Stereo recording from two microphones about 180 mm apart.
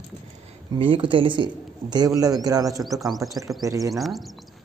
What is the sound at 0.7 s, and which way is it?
A man's voice, 30° right (ahead or behind).